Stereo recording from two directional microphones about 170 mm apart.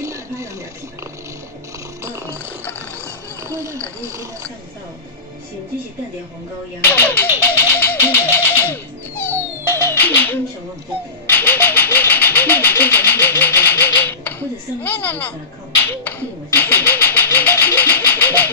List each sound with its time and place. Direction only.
0.0 s a sound: 20° right (ahead or behind)
2.0 s music: 15° right (ahead or behind)
3.4 s speech: 15° right (ahead or behind)
6.8 s music: 10° left (ahead or behind)
9.9 s a sound: 10° left (ahead or behind)
11.2 s speech: 10° left (ahead or behind)